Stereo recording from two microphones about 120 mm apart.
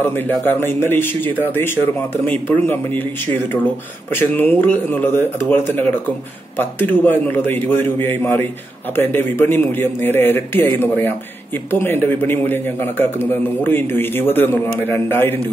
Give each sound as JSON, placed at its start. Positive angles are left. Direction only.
{"t": 0.0, "sound": "speech", "side_deg": 15}
{"t": 4.1, "sound": "speech", "side_deg": 15}